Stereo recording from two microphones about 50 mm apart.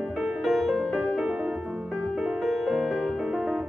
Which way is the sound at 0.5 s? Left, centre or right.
Centre.